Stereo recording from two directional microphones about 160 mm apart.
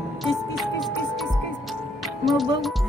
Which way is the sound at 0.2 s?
Centre (ahead or behind).